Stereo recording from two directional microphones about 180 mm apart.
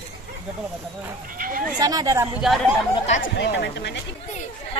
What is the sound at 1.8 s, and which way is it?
Speech, 20° right (ahead or behind).